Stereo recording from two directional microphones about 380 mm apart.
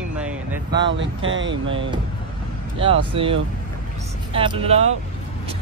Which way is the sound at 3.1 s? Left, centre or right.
Centre.